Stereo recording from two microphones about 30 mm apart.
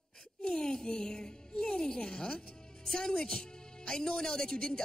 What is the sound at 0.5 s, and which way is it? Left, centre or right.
A woman's voice, left.